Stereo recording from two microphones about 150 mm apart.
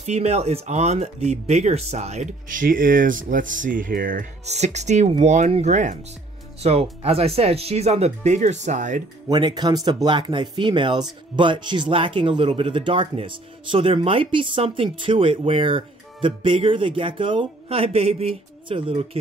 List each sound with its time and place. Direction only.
0.0 s speech: 50° right (ahead or behind); by 4.3 s 70° right (ahead or behind)
4.5 s speech: 50° right (ahead or behind)
6.6 s speech: 40° right (ahead or behind)
9.3 s speech: 30° right (ahead or behind)